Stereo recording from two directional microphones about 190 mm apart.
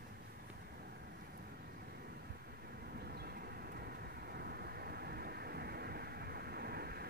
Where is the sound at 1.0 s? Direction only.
55° right (ahead or behind).